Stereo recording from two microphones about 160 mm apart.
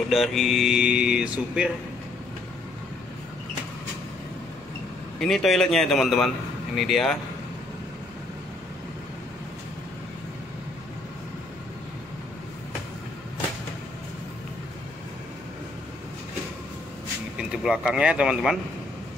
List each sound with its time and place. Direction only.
0.1 s speech: centre (ahead or behind)
5.2 s speech: centre (ahead or behind)
17.4 s speech: 5° right (ahead or behind)